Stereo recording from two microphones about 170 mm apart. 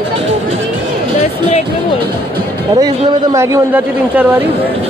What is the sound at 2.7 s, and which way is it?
Speech, 20° right (ahead or behind).